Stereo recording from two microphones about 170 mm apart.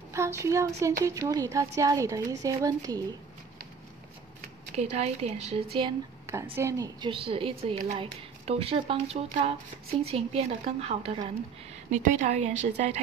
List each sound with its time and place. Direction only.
0.1 s speech: 15° right (ahead or behind)
4.7 s speech: 40° right (ahead or behind)
6.5 s speech: 15° right (ahead or behind)
7.0 s speech: 30° right (ahead or behind)
11.9 s a woman's voice: 45° right (ahead or behind)